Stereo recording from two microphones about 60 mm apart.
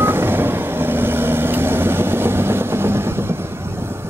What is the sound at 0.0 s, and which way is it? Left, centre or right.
Vehicle, right.